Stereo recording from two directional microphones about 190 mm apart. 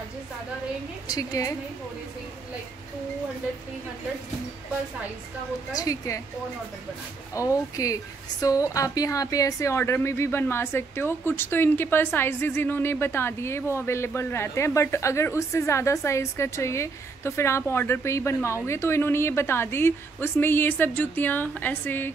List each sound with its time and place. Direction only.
1.0 s a woman's voice: 20° left (ahead or behind)
5.7 s a woman's voice: 20° left (ahead or behind)
7.3 s a woman's voice: 15° left (ahead or behind)